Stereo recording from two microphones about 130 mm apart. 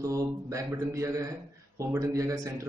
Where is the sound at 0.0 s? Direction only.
25° right (ahead or behind).